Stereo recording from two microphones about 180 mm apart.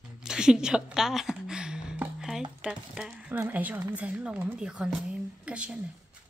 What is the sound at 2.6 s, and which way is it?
A woman's voice, 5° right (ahead or behind).